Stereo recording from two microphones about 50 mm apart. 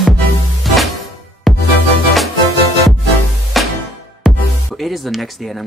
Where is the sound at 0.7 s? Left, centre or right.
Centre.